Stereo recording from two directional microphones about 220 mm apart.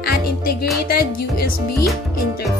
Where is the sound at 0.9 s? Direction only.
45° left (ahead or behind).